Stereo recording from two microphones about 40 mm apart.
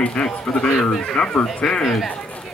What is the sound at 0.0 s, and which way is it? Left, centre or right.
Speech, left.